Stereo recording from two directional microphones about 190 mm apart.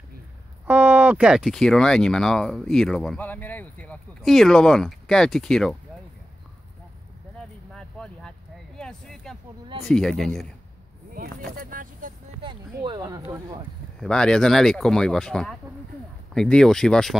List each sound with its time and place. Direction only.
0.7 s speech: 10° right (ahead or behind)
7.3 s vehicle: 5° left (ahead or behind)
8.7 s a sound: 5° left (ahead or behind)
9.8 s speech: centre (ahead or behind)
11.1 s speech: 50° right (ahead or behind)
12.4 s speech: 25° right (ahead or behind)
14.0 s speech: 5° left (ahead or behind)